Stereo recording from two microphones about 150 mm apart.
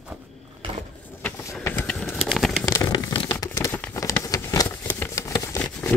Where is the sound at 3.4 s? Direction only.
15° left (ahead or behind).